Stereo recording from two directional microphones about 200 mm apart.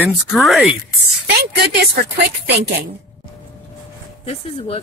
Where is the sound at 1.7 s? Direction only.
55° right (ahead or behind).